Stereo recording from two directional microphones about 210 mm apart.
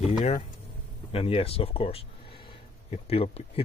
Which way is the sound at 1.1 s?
25° left (ahead or behind).